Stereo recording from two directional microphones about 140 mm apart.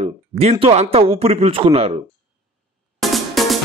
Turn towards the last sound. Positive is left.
turn(degrees=0)  # may be behind; listen again after turning